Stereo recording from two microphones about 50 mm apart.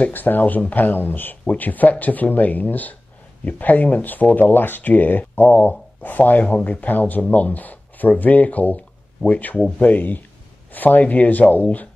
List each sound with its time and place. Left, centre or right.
0.0 s speech: left